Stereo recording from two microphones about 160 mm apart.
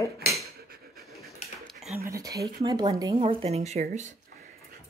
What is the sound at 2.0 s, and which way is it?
Speech, 20° right (ahead or behind).